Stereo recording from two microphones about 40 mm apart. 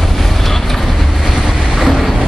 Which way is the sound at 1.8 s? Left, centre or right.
Centre.